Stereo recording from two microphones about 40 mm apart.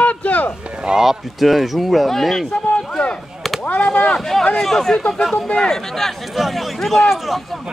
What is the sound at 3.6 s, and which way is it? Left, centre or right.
Chop, left.